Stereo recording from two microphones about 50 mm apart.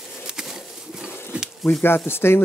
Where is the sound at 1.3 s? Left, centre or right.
Right.